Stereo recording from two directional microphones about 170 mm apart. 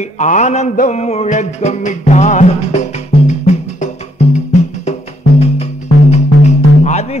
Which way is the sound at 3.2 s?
45° left (ahead or behind).